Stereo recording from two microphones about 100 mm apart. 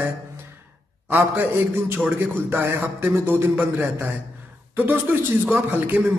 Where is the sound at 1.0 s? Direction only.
20° right (ahead or behind).